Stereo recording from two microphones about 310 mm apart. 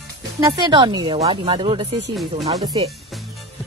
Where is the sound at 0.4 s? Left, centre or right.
Centre.